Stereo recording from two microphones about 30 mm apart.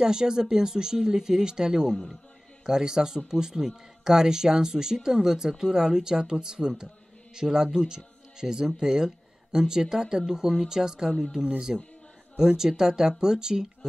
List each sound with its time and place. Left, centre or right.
0.0 s speech: right